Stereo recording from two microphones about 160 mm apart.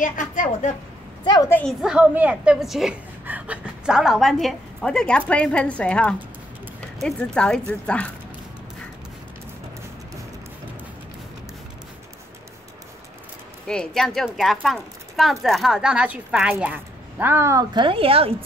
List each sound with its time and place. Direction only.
0.0 s a woman's voice: 55° left (ahead or behind)
1.2 s a woman's voice: 25° left (ahead or behind)
1.5 s a woman's voice: 5° left (ahead or behind)
13.7 s speech: 5° left (ahead or behind); by 18.3 s 35° right (ahead or behind)